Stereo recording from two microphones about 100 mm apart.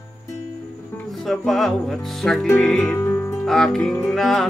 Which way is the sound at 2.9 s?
20° left (ahead or behind).